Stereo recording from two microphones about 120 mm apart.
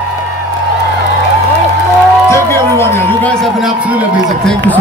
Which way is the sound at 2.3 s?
20° left (ahead or behind).